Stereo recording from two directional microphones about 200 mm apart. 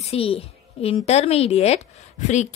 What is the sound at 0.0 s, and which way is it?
Speech, 30° left (ahead or behind).